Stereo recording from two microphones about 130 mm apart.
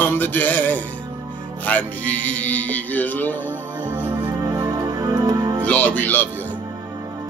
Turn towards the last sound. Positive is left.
turn(degrees=15)  # may be behind; listen again after turning